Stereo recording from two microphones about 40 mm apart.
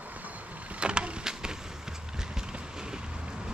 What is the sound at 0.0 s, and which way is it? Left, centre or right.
Vehicle, right.